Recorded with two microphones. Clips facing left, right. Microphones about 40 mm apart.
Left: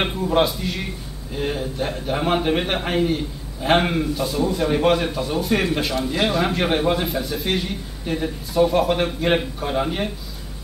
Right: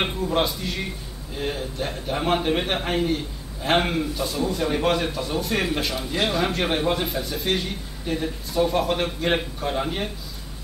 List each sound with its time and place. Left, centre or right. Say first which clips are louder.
0.0 s a man's voice: left 4 dB; centre